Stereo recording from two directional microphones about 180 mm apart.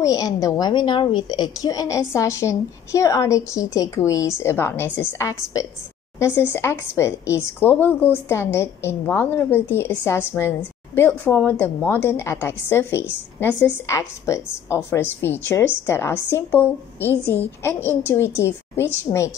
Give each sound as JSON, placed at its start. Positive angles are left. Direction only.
{"t": 0.0, "sound": "a woman's voice", "side_deg": 20}